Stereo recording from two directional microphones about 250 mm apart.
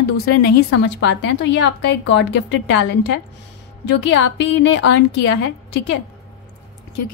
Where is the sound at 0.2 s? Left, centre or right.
Left.